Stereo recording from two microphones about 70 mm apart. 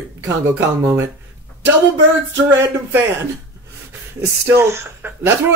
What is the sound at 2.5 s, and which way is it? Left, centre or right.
Speech, right.